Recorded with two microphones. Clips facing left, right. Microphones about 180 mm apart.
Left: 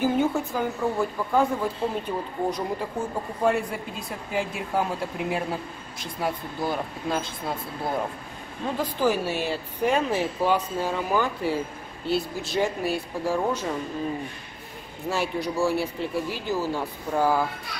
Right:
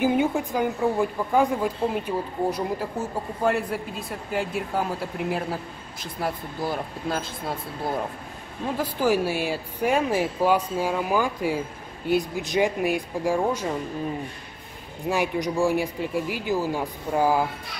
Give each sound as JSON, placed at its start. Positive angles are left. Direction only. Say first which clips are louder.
{"t": 0.0, "sound": "a woman's voice", "louder": "right 1 dB", "side_deg": -15}
{"t": 4.3, "sound": "speech", "louder": "right 1 dB", "side_deg": 0}
{"t": 8.7, "sound": "a woman's voice", "louder": "right 2 dB", "side_deg": -10}
{"t": 15.0, "sound": "a woman's voice", "louder": "right 2 dB", "side_deg": -15}